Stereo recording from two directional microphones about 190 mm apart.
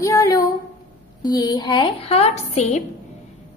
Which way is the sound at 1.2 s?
20° left (ahead or behind).